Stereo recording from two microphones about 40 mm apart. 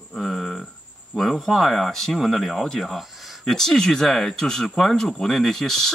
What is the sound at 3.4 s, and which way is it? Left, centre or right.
Speech, centre.